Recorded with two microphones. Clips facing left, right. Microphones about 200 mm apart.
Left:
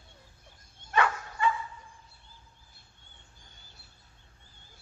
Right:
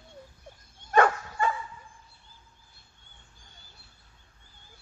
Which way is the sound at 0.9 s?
45° right (ahead or behind).